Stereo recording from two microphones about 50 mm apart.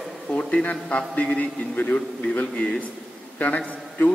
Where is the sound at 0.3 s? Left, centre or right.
Left.